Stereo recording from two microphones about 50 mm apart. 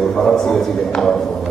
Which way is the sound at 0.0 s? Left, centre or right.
Centre.